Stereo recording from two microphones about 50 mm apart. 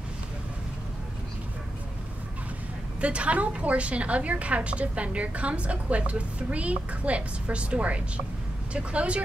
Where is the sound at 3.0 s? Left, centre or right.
Right.